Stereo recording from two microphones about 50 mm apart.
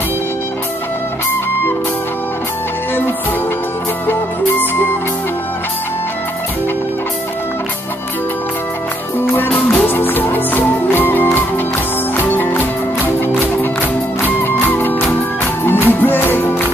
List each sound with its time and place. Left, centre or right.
4.1 s music: left
9.2 s music: left